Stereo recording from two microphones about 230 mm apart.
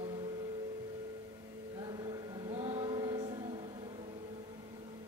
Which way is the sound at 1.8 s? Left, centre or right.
Centre.